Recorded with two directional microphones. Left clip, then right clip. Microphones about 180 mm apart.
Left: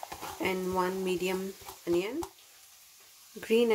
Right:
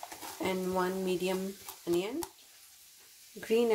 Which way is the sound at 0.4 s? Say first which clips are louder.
Left 2 dB; 5° left (ahead or behind).